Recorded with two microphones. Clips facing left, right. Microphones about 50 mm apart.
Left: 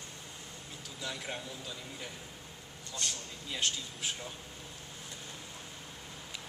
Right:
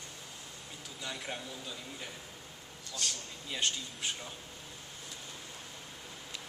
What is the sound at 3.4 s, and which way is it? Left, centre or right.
Speech, centre.